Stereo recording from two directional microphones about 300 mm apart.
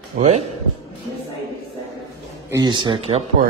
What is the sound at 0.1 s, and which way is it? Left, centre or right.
Speech, right.